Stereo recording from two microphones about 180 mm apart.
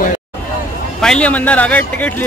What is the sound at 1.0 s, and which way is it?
A man's voice, 5° left (ahead or behind).